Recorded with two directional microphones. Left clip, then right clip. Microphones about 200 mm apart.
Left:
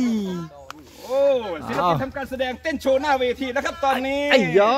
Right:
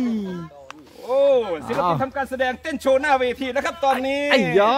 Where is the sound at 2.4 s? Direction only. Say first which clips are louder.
Left 1 dB; 35° right (ahead or behind).